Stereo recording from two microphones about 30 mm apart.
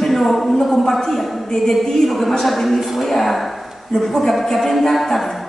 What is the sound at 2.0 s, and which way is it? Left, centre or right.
A woman's voice, centre.